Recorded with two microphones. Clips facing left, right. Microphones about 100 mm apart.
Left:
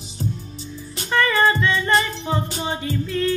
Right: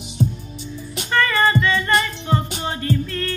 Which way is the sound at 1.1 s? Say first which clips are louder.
Even; 10° left (ahead or behind).